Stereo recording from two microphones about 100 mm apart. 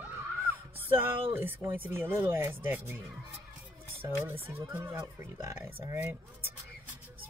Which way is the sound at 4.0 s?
20° right (ahead or behind).